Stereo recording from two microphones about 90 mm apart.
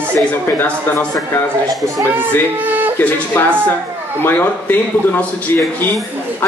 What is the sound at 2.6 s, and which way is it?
Speech, 20° right (ahead or behind).